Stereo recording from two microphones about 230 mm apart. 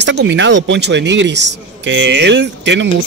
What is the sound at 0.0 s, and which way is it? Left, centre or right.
Speech, right.